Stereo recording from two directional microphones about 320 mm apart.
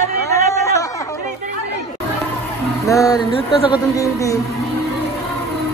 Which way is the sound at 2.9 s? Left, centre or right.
Centre.